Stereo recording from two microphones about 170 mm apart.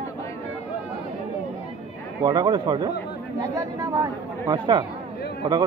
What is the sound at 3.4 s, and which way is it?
Speech, 20° right (ahead or behind).